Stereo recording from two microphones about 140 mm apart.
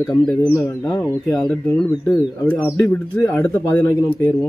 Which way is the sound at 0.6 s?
20° left (ahead or behind).